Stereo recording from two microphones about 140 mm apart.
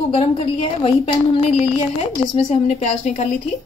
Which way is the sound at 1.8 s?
50° left (ahead or behind).